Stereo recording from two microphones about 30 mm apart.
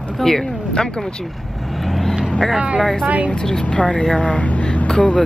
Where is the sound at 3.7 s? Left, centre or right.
Left.